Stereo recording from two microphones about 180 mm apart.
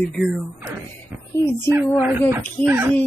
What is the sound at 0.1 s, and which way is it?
Speech, centre (ahead or behind).